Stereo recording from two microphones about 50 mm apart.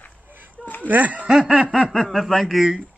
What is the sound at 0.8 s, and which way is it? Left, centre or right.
Speech, right.